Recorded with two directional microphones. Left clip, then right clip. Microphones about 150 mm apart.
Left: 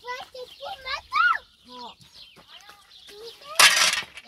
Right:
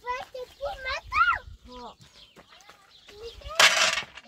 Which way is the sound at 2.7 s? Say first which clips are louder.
Left 4 dB; 80° left.